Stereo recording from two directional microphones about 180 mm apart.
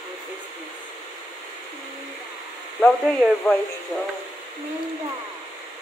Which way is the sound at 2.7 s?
5° left (ahead or behind).